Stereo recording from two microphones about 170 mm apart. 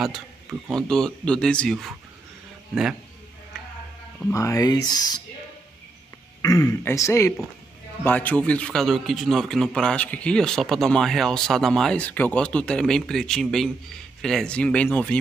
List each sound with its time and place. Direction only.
0.0 s a man's voice: centre (ahead or behind)
4.3 s speech: 20° left (ahead or behind)
6.4 s a man's voice: 20° left (ahead or behind)